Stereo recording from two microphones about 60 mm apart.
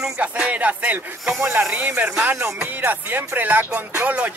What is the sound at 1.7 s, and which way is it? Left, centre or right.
Speech, right.